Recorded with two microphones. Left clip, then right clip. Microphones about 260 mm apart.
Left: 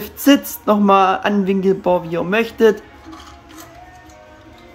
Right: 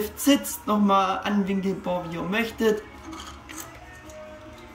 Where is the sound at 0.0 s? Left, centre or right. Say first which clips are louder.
Left 8 dB; centre.